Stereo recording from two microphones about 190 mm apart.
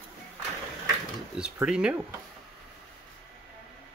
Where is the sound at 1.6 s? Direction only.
5° right (ahead or behind).